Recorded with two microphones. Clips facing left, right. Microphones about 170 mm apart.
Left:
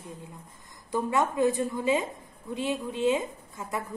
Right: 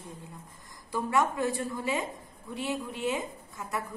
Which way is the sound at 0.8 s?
20° left (ahead or behind).